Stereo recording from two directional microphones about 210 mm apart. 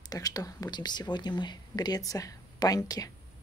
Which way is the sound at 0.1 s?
20° left (ahead or behind).